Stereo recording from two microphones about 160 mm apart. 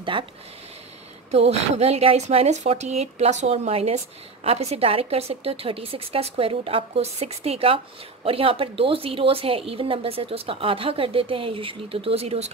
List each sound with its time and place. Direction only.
0.1 s speech: 30° right (ahead or behind)
1.3 s speech: 40° right (ahead or behind)